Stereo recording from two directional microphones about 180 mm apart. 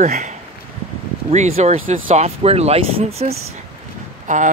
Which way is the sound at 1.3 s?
40° right (ahead or behind).